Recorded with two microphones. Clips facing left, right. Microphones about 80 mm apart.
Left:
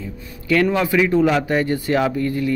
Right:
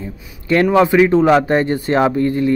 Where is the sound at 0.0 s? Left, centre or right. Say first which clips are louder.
Right 2 dB; right.